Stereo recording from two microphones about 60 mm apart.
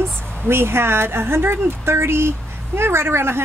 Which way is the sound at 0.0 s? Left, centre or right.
Right.